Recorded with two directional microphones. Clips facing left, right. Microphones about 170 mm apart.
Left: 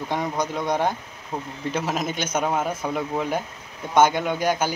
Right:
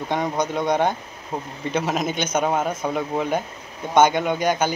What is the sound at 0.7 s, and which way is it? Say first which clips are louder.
Speech: right 3 dB; 5° left (ahead or behind).